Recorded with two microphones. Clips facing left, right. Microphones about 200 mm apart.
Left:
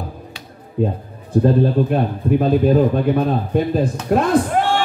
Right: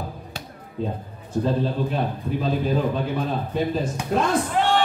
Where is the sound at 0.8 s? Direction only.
55° left (ahead or behind).